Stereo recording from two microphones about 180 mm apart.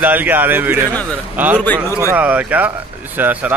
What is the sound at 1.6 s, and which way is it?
Speech, 10° left (ahead or behind).